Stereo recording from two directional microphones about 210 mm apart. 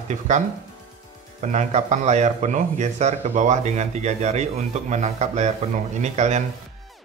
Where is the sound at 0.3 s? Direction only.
35° right (ahead or behind).